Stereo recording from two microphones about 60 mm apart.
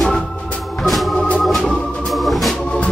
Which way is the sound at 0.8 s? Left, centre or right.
Centre.